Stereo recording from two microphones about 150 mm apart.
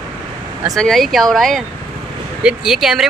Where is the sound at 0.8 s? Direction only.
Centre (ahead or behind).